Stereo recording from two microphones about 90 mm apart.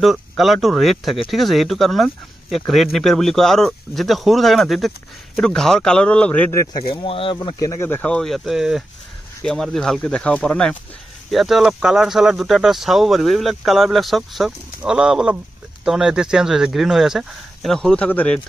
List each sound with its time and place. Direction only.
0.0 s speech: centre (ahead or behind); by 6.5 s 15° left (ahead or behind)
6.9 s speech: 90° left
7.5 s speech: 35° left (ahead or behind)
8.0 s speech: 10° left (ahead or behind)
11.2 s speech: centre (ahead or behind)
17.6 s speech: 5° left (ahead or behind)